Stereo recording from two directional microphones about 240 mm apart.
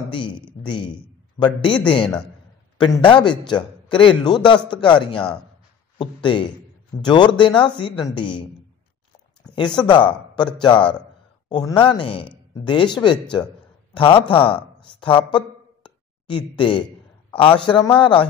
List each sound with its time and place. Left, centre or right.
0.1 s a man's voice: centre
2.8 s a man's voice: centre
9.8 s a man's voice: centre